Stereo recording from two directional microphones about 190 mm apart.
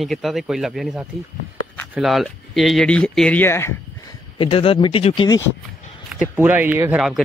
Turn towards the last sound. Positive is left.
turn(degrees=-5)  # may be behind; listen again after turning